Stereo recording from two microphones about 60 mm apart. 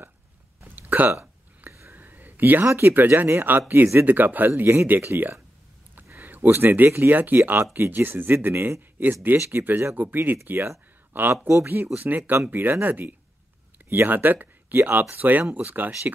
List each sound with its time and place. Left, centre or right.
0.7 s hiccup: right
1.7 s whispering: right
2.0 s a sound: right
2.6 s speech: right